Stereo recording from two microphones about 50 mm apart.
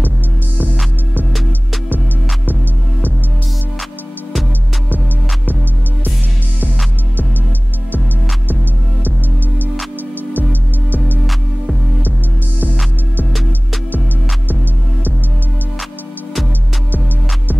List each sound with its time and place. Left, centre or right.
4.9 s music: right
10.3 s music: right